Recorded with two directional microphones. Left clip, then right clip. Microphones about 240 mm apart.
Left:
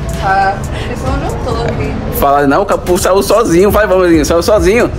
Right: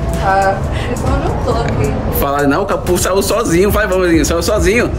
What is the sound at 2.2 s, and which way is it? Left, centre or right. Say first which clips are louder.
Speech: left 6 dB; centre.